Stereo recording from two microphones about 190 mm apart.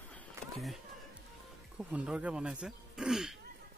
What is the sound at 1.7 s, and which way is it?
Speech, 5° right (ahead or behind).